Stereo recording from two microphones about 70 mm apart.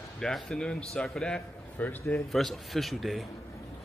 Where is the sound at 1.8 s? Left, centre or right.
Left.